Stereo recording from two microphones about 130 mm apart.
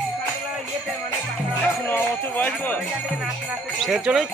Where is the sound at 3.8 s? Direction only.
Centre (ahead or behind).